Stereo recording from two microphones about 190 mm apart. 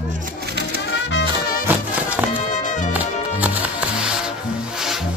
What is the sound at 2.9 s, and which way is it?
Music, 10° right (ahead or behind).